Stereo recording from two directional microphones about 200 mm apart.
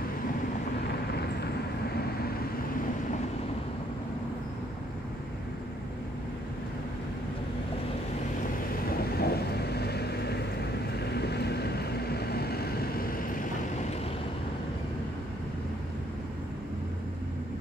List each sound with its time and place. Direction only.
8.9 s vehicle: 50° left (ahead or behind)